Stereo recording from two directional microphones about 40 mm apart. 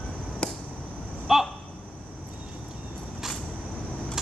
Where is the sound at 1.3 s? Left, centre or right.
Centre.